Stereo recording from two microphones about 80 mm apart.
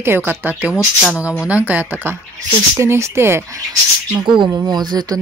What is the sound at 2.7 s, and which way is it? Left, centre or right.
Speech, right.